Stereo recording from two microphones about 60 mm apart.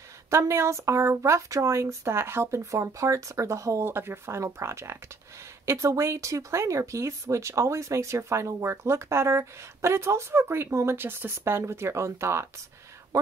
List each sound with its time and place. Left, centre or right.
0.3 s speech: right
3.8 s speech: right
11.0 s speech: right
13.1 s a sound: right